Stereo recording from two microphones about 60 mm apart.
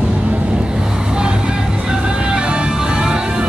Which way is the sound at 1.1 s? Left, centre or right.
Centre.